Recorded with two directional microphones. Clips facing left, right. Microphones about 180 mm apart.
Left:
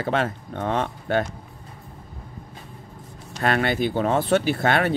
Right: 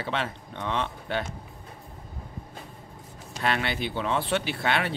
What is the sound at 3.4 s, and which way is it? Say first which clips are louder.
Speech: left 6 dB; 45° left (ahead or behind).